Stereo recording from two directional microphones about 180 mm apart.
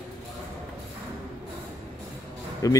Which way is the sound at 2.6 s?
20° left (ahead or behind).